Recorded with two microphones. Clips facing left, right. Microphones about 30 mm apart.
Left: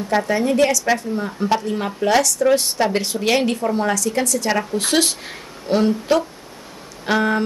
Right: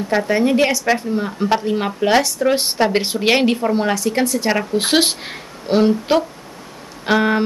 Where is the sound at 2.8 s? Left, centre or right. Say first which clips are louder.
Right 3 dB; right.